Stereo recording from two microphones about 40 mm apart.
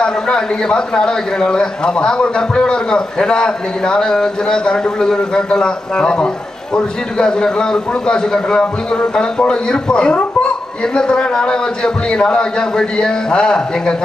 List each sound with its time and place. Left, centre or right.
0.0 s a man's voice: centre